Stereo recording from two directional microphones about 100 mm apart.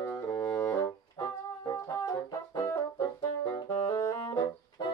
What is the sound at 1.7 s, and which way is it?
Brass instrument, 35° left (ahead or behind).